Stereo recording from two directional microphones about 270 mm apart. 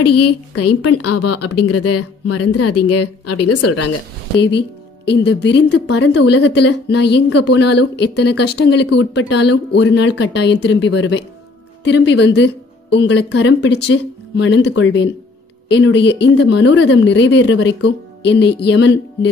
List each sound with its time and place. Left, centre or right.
0.0 s a woman's voice: left
4.4 s speech: left